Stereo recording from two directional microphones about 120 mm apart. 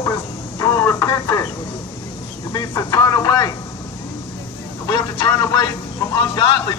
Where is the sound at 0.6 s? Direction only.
20° left (ahead or behind).